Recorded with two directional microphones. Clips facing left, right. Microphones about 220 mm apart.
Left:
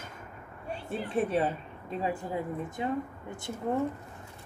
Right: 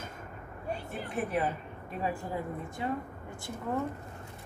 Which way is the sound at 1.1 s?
25° left (ahead or behind).